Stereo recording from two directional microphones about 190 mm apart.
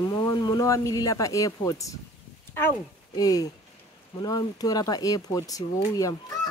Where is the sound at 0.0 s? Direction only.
20° left (ahead or behind).